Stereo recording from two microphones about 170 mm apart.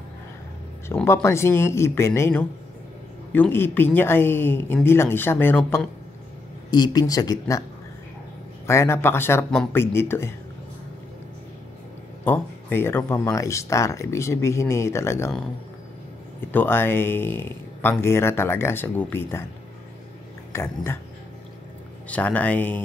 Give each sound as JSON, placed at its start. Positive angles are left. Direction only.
{"t": 1.0, "sound": "speech", "side_deg": 15}
{"t": 6.7, "sound": "speech", "side_deg": 25}
{"t": 8.6, "sound": "speech", "side_deg": 15}
{"t": 12.3, "sound": "speech", "side_deg": 10}
{"t": 16.3, "sound": "speech", "side_deg": 10}
{"t": 20.5, "sound": "speech", "side_deg": 15}
{"t": 22.0, "sound": "speech", "side_deg": 10}